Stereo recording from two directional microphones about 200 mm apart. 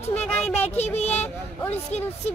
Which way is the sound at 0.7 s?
30° left (ahead or behind).